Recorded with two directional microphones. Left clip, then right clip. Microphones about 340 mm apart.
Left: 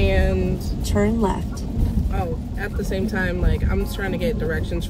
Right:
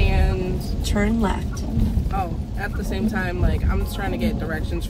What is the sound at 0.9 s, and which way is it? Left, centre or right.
Speech, left.